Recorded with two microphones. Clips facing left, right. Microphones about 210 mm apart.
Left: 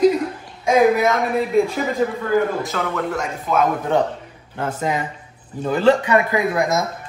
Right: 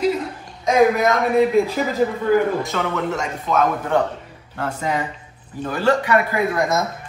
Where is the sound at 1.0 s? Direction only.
Centre (ahead or behind).